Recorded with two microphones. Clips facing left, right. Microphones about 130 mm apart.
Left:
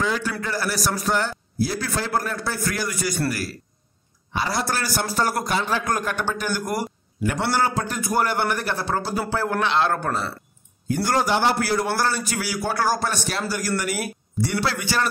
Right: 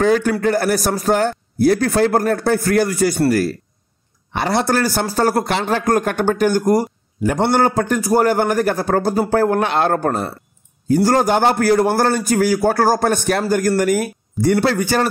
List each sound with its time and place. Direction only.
0.0 s a man's voice: 50° right (ahead or behind)
4.3 s a man's voice: 60° right (ahead or behind); by 5.3 s 45° right (ahead or behind)
5.4 s a man's voice: 65° right (ahead or behind)
8.0 s a man's voice: 40° right (ahead or behind)